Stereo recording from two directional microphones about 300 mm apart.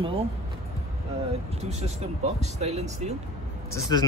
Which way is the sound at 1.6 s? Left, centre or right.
Right.